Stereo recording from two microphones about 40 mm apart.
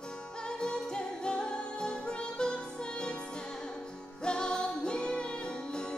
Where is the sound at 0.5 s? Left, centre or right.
Left.